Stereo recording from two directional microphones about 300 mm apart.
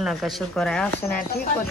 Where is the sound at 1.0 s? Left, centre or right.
Left.